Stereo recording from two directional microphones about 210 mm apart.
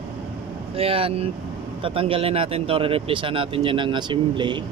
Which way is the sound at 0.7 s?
25° right (ahead or behind).